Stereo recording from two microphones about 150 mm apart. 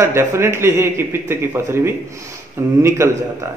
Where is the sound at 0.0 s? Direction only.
15° right (ahead or behind).